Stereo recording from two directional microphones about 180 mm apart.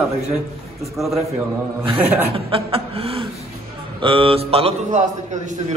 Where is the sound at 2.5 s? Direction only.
30° right (ahead or behind).